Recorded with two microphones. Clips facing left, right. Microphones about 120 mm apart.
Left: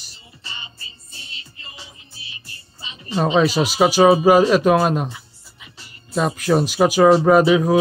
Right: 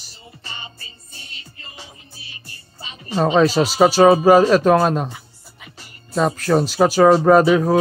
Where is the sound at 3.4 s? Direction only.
10° left (ahead or behind).